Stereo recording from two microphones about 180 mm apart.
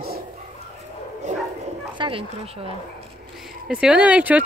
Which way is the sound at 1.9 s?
30° right (ahead or behind).